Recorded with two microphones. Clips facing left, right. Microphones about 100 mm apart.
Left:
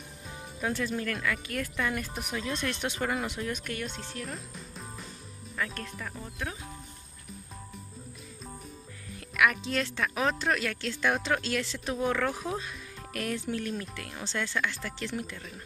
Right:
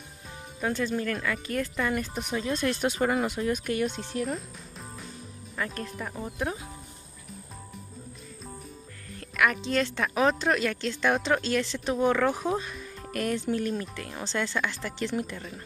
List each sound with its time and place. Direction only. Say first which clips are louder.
0.6 s speech: right 3 dB; centre (ahead or behind)
4.3 s music: right 6 dB; centre (ahead or behind)
5.6 s speech: right 2 dB; 5° right (ahead or behind)
6.1 s speech: right 8 dB; 25° right (ahead or behind)
9.4 s speech: right 2 dB; centre (ahead or behind)